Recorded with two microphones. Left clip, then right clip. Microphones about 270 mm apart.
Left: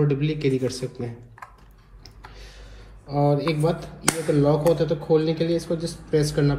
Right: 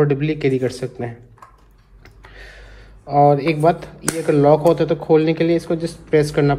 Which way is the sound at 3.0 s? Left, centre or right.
Centre.